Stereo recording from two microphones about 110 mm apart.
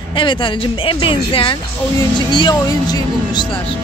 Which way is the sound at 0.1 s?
50° left (ahead or behind).